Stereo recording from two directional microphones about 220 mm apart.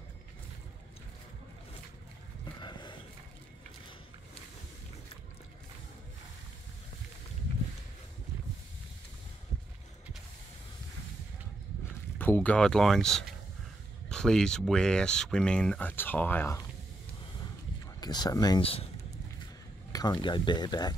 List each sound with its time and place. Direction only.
2.6 s horse: 20° left (ahead or behind)
12.2 s speech: 10° left (ahead or behind)
18.0 s speech: 20° left (ahead or behind)
19.9 s speech: 15° left (ahead or behind)